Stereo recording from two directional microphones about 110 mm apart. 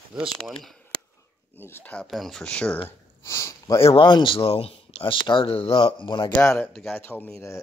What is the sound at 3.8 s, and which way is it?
Speech, 55° left (ahead or behind).